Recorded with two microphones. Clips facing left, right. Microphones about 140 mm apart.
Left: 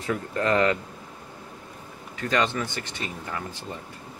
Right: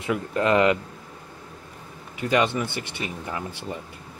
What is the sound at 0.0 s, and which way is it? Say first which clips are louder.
Speech: right 3 dB; 20° right (ahead or behind).